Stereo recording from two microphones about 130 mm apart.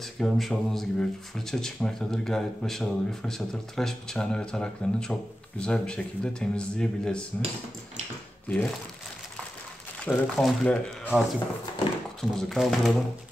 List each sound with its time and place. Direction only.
0.2 s speech: centre (ahead or behind)
8.5 s speech: 15° left (ahead or behind)
10.0 s speech: 5° left (ahead or behind)